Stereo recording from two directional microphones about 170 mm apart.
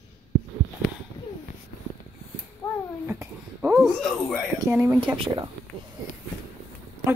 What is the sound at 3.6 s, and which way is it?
A woman's voice, centre (ahead or behind).